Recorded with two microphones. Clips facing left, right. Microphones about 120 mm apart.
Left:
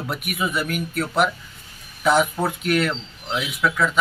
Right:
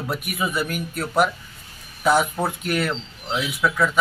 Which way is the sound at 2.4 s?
5° right (ahead or behind).